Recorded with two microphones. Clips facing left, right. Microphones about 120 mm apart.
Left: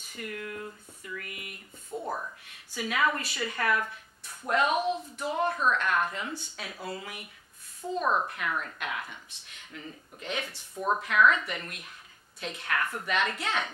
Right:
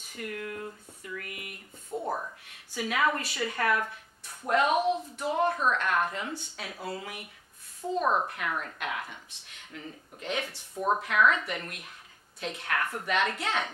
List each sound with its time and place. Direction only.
0.1 s a sound: 45° right (ahead or behind)
1.9 s a sound: 20° right (ahead or behind)
2.1 s speech: 30° right (ahead or behind)
2.8 s a woman's voice: 45° right (ahead or behind)
7.8 s a woman's voice: 25° right (ahead or behind)
8.3 s speech: 40° right (ahead or behind)
10.7 s a woman's voice: 25° right (ahead or behind)
11.1 s a woman's voice: 40° right (ahead or behind)